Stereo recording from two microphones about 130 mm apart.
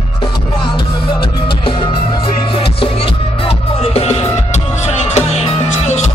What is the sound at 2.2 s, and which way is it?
Music, 40° left (ahead or behind).